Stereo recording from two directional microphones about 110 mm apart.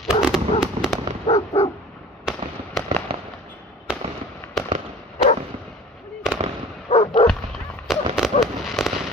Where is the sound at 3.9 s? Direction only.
10° right (ahead or behind).